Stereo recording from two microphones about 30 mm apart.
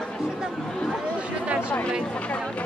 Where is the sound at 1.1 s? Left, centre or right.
Right.